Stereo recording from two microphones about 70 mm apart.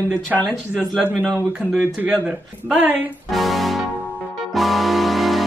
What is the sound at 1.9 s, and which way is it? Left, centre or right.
Speech, centre.